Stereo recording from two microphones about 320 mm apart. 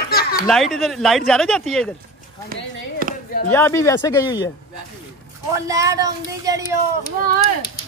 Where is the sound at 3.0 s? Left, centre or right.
Right.